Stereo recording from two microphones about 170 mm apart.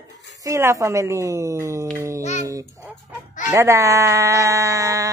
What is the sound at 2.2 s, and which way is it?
Speech, 40° left (ahead or behind).